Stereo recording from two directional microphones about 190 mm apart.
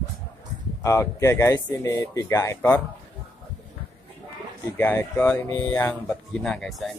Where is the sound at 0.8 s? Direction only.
15° left (ahead or behind).